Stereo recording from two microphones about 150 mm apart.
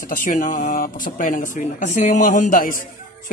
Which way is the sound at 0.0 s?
65° left (ahead or behind).